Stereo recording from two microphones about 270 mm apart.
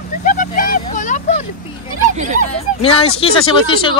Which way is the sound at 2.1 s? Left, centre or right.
Right.